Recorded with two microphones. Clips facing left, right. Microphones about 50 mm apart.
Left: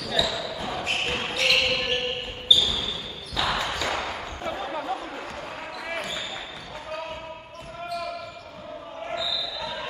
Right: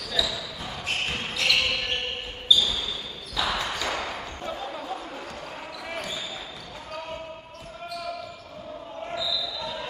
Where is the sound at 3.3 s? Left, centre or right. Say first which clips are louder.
Left 1 dB; centre.